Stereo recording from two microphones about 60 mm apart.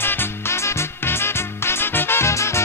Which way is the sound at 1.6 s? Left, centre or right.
Left.